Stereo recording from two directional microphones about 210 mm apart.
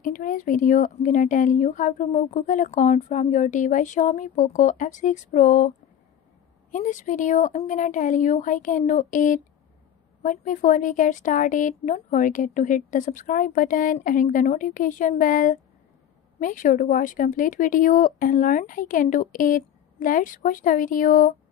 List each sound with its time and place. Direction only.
0.0 s speech: 40° left (ahead or behind)